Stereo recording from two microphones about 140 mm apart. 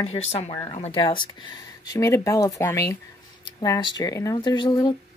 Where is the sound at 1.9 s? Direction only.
20° left (ahead or behind).